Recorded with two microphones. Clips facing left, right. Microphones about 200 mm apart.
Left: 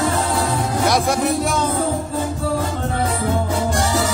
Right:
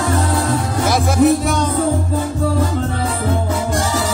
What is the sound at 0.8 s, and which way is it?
Music, centre (ahead or behind).